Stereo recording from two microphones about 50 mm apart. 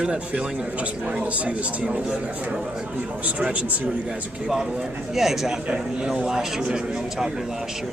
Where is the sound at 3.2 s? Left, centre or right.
Right.